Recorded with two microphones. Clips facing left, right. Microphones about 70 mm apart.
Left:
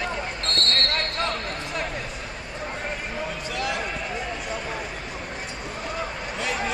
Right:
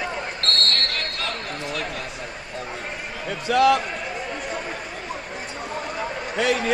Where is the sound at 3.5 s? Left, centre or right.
Right.